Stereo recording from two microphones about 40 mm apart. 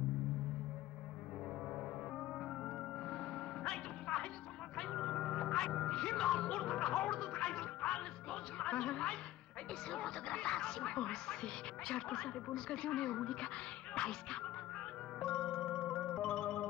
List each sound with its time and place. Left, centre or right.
2.1 s music: left
9.8 s speech: left
15.1 s music: centre